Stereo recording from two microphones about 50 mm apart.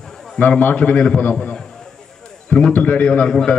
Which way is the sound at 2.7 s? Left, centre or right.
Left.